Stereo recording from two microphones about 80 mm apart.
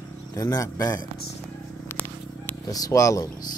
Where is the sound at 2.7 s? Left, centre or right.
Left.